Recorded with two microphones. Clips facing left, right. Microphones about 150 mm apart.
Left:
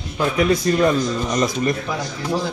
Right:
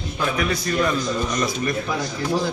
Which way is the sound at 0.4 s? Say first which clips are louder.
Left 7 dB; 30° left (ahead or behind).